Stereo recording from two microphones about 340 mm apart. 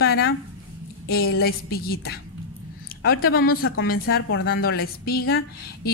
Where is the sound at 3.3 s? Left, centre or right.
Left.